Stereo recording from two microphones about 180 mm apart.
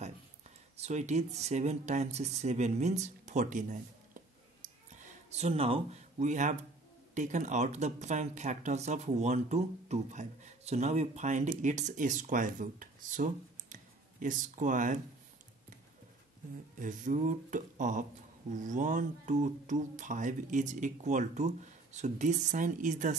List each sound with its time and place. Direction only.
0.7 s speech: 40° right (ahead or behind)
16.8 s speech: 45° right (ahead or behind)